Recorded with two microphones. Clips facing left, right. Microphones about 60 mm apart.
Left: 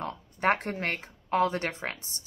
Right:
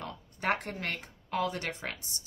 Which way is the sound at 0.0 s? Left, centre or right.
Left.